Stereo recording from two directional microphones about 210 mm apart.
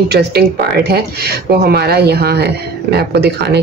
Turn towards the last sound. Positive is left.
turn(degrees=-50)  # may be behind; listen again after turning